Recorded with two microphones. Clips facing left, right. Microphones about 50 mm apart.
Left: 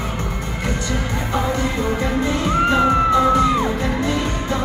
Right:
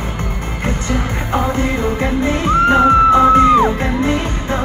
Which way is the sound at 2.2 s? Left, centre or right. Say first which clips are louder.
Right 6 dB; right.